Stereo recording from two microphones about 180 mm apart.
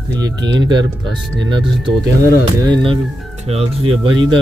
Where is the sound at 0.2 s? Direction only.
25° right (ahead or behind).